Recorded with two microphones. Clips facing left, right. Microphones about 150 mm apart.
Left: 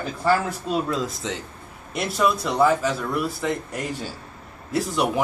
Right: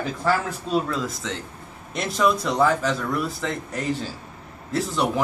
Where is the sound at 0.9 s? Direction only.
20° left (ahead or behind).